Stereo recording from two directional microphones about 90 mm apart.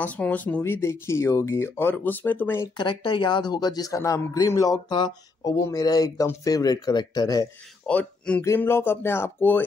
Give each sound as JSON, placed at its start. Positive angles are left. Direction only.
{"t": 0.0, "sound": "speech", "side_deg": 15}
{"t": 2.8, "sound": "speech", "side_deg": 60}
{"t": 7.8, "sound": "speech", "side_deg": 15}
{"t": 8.5, "sound": "speech", "side_deg": 25}